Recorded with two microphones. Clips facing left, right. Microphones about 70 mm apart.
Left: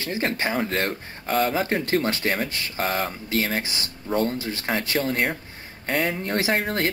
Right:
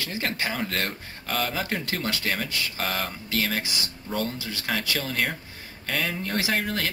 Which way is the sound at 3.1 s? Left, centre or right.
Left.